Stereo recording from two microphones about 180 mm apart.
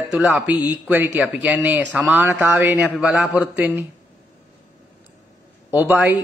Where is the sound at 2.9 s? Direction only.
Centre (ahead or behind).